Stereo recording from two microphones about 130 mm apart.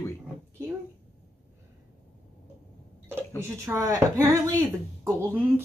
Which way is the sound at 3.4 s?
20° right (ahead or behind).